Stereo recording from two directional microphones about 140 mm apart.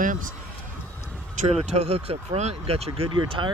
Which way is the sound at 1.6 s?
50° right (ahead or behind).